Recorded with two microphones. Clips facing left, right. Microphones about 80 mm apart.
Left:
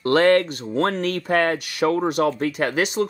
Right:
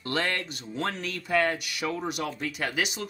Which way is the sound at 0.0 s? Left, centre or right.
Left.